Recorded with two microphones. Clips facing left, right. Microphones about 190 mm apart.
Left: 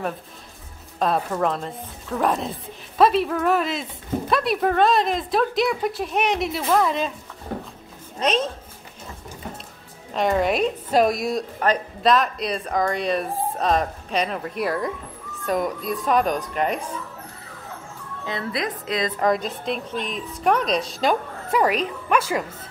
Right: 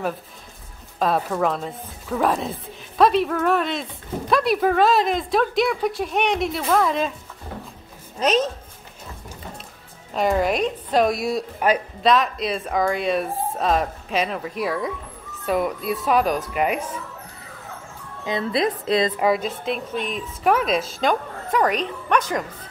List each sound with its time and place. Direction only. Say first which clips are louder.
0.9 s a woman's voice: right 1 dB; centre (ahead or behind)
10.1 s a woman's voice: even; centre (ahead or behind)
18.2 s a woman's voice: right 5 dB; 20° right (ahead or behind)
19.1 s a woman's voice: right 1 dB; 5° right (ahead or behind)